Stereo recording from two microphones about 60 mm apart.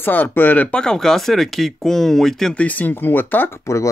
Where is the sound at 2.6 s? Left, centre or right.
Left.